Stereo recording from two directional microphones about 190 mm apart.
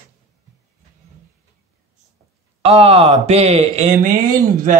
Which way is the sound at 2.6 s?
30° right (ahead or behind).